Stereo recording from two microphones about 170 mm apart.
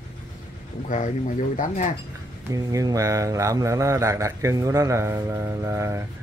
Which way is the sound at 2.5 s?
20° right (ahead or behind).